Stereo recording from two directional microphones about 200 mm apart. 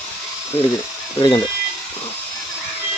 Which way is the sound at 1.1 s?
25° left (ahead or behind).